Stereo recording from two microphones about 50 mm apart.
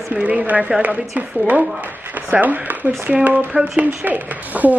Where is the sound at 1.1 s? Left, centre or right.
Right.